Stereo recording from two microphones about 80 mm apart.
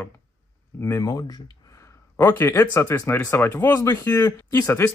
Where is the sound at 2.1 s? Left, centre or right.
Left.